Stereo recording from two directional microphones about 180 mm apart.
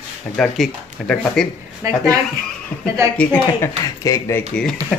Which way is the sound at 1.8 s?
20° right (ahead or behind).